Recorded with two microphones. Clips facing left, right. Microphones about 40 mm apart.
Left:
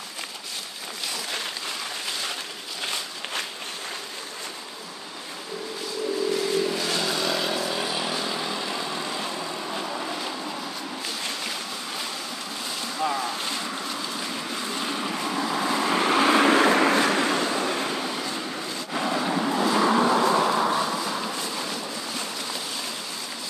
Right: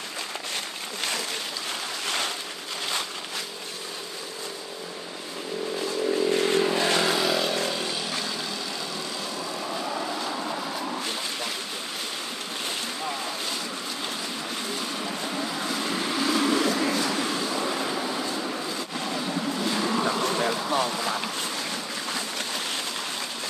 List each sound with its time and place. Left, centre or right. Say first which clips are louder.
6.3 s vehicle: right 2 dB; right
6.6 s vehicle: right 3 dB; right
7.2 s vehicle: right 1 dB; centre
7.7 s vehicle: left 2 dB; centre
9.4 s vehicle: even; centre
10.3 s vehicle: right 2 dB; centre
15.1 s vehicle: left 4 dB; left
17.6 s vehicle: left 1 dB; centre
18.9 s vehicle: left 6 dB; left
19.5 s vehicle: left 7 dB; left
20.4 s bee: left 5 dB; left